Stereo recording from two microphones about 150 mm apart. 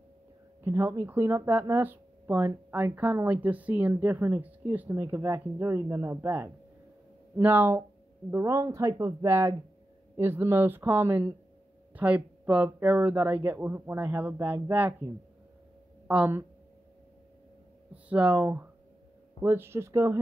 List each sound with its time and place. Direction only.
0.7 s speech: 15° right (ahead or behind)
16.1 s speech: 10° right (ahead or behind)
18.0 s speech: 10° right (ahead or behind)